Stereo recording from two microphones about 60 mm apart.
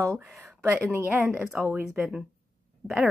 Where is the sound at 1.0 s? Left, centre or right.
Right.